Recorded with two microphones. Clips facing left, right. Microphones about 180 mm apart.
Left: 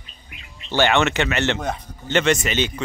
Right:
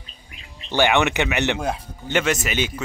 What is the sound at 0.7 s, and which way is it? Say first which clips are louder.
Speech: even; 15° right (ahead or behind).